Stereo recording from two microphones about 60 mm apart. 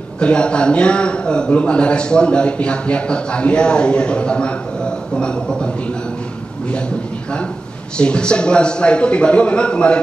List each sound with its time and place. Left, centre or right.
0.2 s a man's voice: centre
8.0 s a man's voice: centre